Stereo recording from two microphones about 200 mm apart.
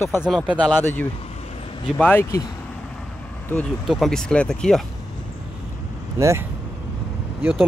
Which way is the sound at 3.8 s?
Centre (ahead or behind).